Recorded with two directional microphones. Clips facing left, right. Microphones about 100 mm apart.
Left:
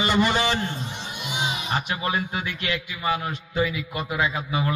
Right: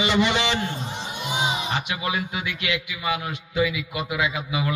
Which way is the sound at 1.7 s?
40° left (ahead or behind).